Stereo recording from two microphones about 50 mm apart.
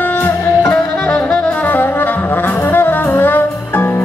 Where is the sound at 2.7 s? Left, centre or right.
Left.